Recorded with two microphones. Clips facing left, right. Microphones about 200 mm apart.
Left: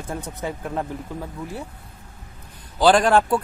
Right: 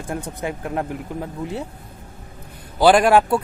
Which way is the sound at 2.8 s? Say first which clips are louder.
Right 2 dB; 10° right (ahead or behind).